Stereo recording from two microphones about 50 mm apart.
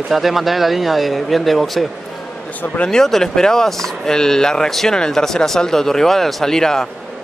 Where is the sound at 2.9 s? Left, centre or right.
Centre.